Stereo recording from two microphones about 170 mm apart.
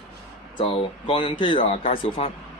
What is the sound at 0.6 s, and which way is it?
Speech, 30° left (ahead or behind).